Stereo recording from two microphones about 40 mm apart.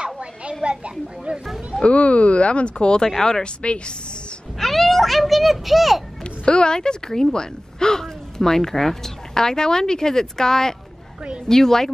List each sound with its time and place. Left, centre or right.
0.0 s a sound: right
0.7 s children playing: right
1.8 s speech: left
3.1 s speech: centre
3.6 s speech: left
4.6 s a child's voice: centre
6.4 s speech: left